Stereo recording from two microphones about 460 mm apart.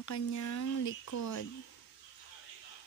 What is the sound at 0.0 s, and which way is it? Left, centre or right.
Speech, left.